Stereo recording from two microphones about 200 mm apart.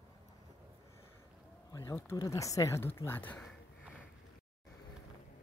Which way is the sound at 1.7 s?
15° left (ahead or behind).